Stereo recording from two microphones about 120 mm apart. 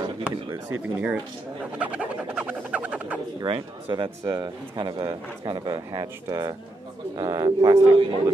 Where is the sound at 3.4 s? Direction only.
45° right (ahead or behind).